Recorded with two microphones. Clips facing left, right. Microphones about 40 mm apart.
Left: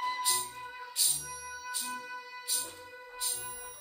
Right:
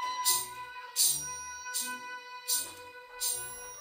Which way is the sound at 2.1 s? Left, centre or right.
Centre.